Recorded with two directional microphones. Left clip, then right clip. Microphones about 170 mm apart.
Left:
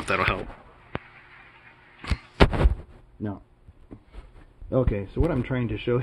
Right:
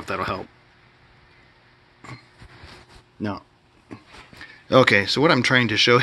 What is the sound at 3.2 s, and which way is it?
Speech, 45° right (ahead or behind).